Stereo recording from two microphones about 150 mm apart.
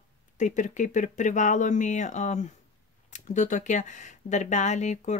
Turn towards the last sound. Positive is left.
turn(degrees=50)  # may be behind; listen again after turning